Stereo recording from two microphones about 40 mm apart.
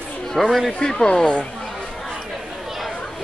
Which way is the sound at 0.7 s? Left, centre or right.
Centre.